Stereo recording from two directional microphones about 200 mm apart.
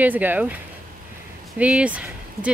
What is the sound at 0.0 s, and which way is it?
Speech, 10° right (ahead or behind).